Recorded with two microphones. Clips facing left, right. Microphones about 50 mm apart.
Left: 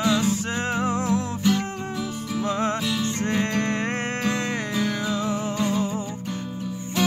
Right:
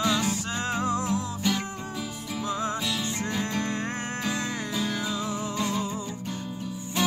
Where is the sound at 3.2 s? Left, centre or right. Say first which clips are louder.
Left 7 dB; left.